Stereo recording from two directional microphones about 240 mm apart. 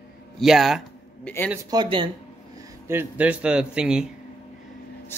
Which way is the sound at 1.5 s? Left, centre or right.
Centre.